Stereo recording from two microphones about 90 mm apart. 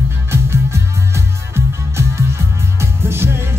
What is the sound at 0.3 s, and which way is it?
Music, 30° right (ahead or behind).